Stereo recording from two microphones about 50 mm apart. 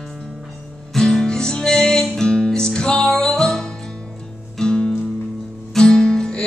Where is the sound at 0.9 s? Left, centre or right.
Centre.